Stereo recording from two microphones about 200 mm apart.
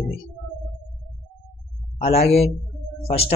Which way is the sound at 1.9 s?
30° left (ahead or behind).